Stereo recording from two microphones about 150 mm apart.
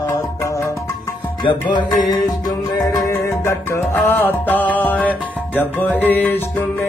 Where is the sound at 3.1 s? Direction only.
15° left (ahead or behind).